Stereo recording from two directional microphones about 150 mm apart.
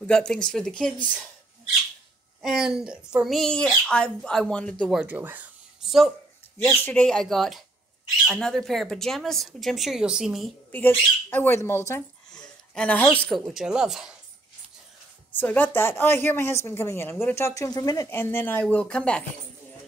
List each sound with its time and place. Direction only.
0.0 s speech: 5° left (ahead or behind)
2.4 s speech: 5° right (ahead or behind)
5.0 s speech: 15° right (ahead or behind)
6.8 s speech: 10° left (ahead or behind)
11.2 s a woman's voice: 15° left (ahead or behind)
12.3 s a sound: 5° left (ahead or behind)
13.5 s speech: 5° right (ahead or behind)
15.3 s a woman's voice: 10° left (ahead or behind)
18.1 s a woman's voice: 15° left (ahead or behind)